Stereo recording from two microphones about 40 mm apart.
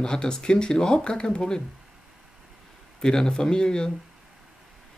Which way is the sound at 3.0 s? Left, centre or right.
Centre.